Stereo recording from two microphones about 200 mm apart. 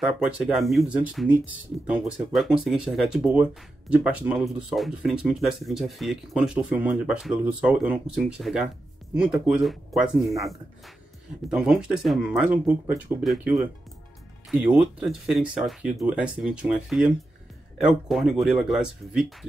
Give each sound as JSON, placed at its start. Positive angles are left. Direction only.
{"t": 0.0, "sound": "speech", "side_deg": -5}
{"t": 14.5, "sound": "speech", "side_deg": -5}